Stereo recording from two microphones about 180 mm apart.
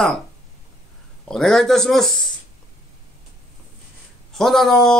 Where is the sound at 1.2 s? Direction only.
5° left (ahead or behind).